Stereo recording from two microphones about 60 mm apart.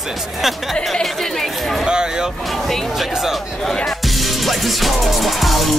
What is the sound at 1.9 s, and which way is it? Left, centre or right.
Speech, centre.